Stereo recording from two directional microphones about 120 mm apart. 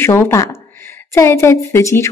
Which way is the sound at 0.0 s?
25° left (ahead or behind).